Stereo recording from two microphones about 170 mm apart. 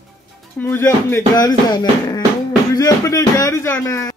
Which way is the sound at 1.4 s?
25° left (ahead or behind).